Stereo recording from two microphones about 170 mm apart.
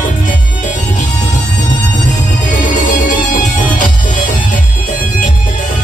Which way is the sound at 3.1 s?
50° left (ahead or behind).